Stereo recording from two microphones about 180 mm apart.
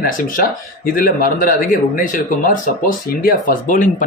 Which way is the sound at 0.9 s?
50° left (ahead or behind).